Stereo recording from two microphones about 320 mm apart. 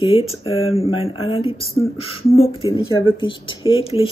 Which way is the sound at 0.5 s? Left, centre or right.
Centre.